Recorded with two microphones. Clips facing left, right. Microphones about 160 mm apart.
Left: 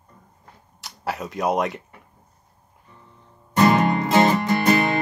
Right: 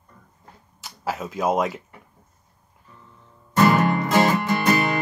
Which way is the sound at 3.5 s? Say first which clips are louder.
Left 1 dB; 20° left (ahead or behind).